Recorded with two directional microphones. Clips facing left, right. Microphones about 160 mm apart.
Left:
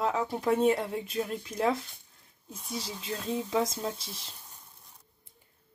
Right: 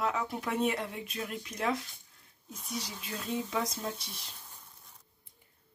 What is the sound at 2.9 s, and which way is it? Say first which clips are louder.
A woman's voice: left 6 dB; 25° left (ahead or behind).